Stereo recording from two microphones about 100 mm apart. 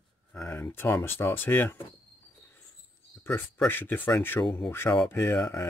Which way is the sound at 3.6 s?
20° left (ahead or behind).